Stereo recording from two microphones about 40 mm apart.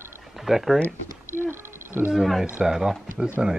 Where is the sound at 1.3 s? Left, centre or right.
Right.